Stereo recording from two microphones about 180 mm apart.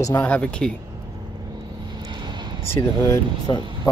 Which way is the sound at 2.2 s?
25° right (ahead or behind).